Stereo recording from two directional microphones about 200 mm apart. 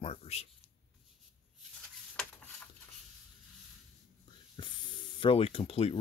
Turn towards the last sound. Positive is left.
turn(degrees=30)  # may be behind; listen again after turning